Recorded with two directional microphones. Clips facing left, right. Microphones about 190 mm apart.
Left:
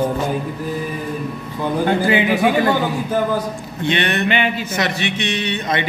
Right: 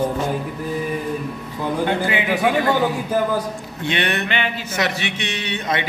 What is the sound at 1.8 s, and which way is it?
Speech, 35° left (ahead or behind).